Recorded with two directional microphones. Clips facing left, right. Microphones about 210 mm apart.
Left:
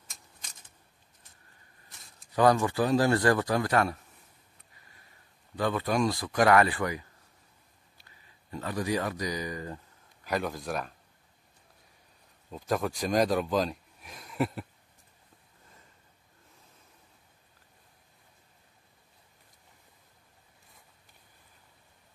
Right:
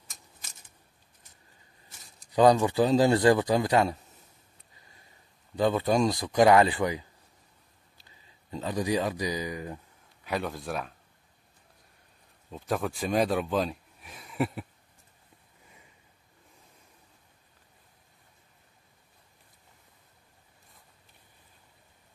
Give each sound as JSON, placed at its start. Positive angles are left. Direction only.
{"t": 2.1, "sound": "speech", "side_deg": -15}
{"t": 5.6, "sound": "speech", "side_deg": -25}
{"t": 8.5, "sound": "speech", "side_deg": -20}
{"t": 10.2, "sound": "speech", "side_deg": 0}
{"t": 12.4, "sound": "speech", "side_deg": 0}